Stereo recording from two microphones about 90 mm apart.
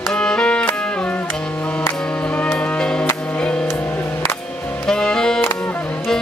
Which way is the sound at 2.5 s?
10° left (ahead or behind).